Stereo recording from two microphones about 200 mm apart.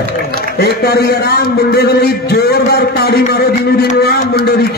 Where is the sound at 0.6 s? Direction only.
55° left (ahead or behind).